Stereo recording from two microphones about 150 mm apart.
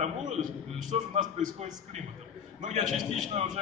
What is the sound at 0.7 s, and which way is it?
Speech, 55° right (ahead or behind).